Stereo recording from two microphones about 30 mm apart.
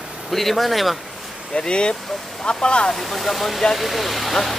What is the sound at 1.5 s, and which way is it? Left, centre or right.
Speech, left.